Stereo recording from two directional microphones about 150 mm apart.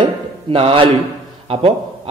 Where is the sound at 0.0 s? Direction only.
35° right (ahead or behind).